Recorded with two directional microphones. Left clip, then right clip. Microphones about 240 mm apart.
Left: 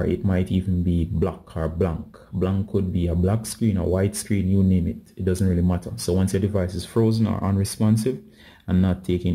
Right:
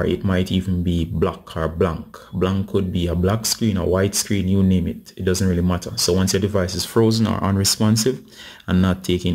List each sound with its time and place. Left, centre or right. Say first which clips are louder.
0.0 s speech: right 4 dB; centre